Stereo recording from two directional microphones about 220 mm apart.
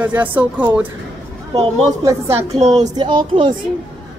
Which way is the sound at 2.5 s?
30° right (ahead or behind).